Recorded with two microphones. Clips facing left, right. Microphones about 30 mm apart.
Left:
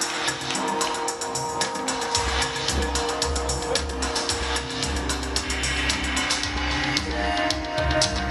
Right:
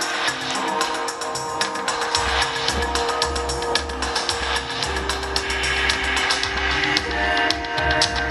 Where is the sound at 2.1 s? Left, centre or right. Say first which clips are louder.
Right 4 dB; right.